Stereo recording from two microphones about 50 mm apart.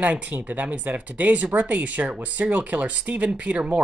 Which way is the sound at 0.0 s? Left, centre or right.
Right.